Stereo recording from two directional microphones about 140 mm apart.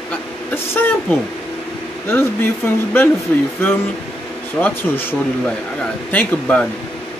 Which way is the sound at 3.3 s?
15° left (ahead or behind).